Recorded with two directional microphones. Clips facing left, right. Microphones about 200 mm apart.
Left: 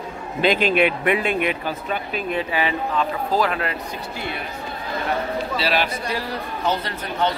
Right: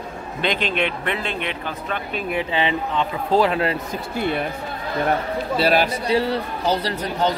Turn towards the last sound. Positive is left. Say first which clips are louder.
# right 2 dB
turn(degrees=-35)  # may be behind; listen again after turning